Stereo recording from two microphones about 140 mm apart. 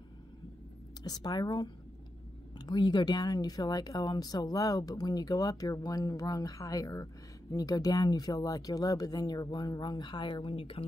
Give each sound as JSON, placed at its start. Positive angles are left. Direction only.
{"t": 1.0, "sound": "speech", "side_deg": 30}